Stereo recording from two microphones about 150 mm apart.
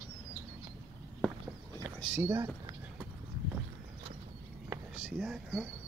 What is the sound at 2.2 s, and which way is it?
Speech, 15° right (ahead or behind).